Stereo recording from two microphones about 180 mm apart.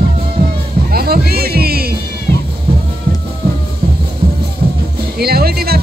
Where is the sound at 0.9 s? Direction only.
60° right (ahead or behind).